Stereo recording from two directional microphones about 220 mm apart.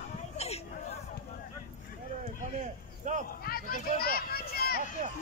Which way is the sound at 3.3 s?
45° left (ahead or behind).